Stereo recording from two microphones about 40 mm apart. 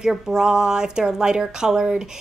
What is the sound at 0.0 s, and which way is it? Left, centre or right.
A woman's voice, centre.